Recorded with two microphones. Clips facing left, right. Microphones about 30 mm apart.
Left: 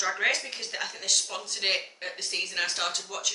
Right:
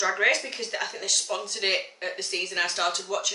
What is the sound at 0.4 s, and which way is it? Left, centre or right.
Speech, centre.